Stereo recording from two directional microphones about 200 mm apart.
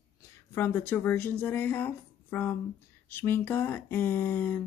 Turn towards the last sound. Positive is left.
turn(degrees=10)  # may be behind; listen again after turning